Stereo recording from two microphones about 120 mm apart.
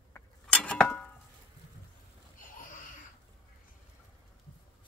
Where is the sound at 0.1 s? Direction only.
10° left (ahead or behind).